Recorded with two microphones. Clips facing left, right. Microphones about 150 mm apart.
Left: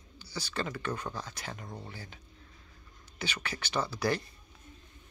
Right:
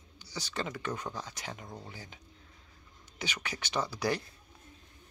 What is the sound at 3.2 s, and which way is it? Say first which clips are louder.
Speech: left 1 dB; 15° right (ahead or behind).